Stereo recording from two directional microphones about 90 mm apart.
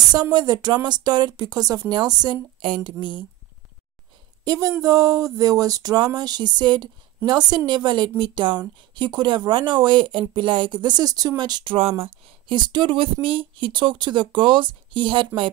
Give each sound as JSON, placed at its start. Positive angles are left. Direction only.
{"t": 0.1, "sound": "speech", "side_deg": -50}
{"t": 2.6, "sound": "speech", "side_deg": -65}
{"t": 4.5, "sound": "speech", "side_deg": -35}
{"t": 12.0, "sound": "speech", "side_deg": -65}